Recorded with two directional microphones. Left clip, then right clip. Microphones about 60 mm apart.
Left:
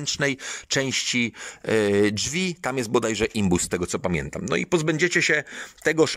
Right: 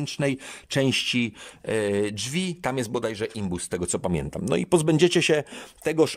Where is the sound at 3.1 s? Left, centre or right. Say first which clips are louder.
Left 6 dB; left.